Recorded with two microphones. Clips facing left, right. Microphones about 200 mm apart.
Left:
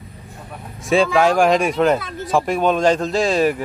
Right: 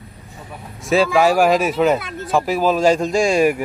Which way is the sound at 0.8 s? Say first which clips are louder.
Even; 5° right (ahead or behind).